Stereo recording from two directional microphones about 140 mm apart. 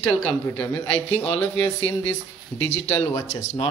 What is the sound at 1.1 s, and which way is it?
Speech, 45° left (ahead or behind).